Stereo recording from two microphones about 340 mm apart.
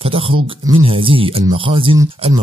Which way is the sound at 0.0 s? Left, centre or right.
Centre.